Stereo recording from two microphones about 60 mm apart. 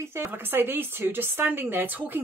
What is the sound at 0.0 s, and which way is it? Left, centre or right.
Speech, right.